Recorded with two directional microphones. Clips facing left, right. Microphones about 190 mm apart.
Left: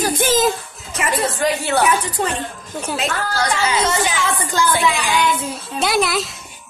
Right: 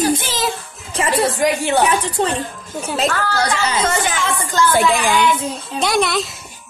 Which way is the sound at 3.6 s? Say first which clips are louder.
Even; 45° right (ahead or behind).